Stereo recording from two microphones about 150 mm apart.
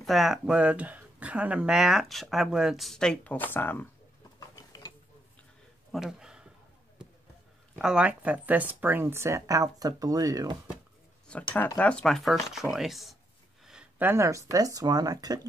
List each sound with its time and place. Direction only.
0.0 s speech: centre (ahead or behind)
5.9 s a sound: 5° right (ahead or behind)
7.7 s speech: 5° right (ahead or behind); by 10.6 s 25° right (ahead or behind)
11.5 s speech: 10° left (ahead or behind); by 15.4 s 25° right (ahead or behind)